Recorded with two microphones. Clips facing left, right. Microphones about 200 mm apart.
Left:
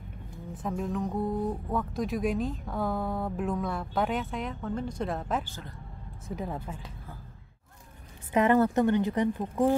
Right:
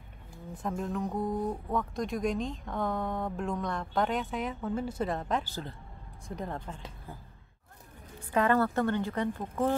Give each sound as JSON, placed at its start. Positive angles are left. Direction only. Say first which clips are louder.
{"t": 0.6, "sound": "speech", "louder": "left 2 dB", "side_deg": 0}
{"t": 5.4, "sound": "speech", "louder": "right 3 dB", "side_deg": -35}
{"t": 6.2, "sound": "speech", "louder": "left 2 dB", "side_deg": 5}
{"t": 8.3, "sound": "a woman's voice", "louder": "left 3 dB", "side_deg": 20}